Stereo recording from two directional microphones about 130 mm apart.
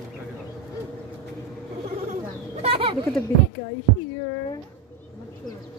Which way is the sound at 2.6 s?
50° right (ahead or behind).